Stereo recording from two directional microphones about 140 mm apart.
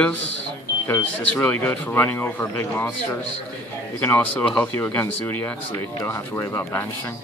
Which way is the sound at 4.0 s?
15° left (ahead or behind).